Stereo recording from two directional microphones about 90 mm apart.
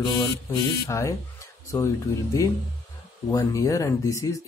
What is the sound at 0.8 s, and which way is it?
Speech, 35° left (ahead or behind).